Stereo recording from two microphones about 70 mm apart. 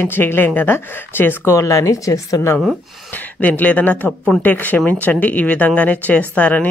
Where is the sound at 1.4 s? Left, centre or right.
Left.